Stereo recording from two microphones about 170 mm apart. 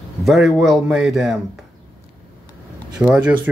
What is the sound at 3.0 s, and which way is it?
Speech, 5° right (ahead or behind).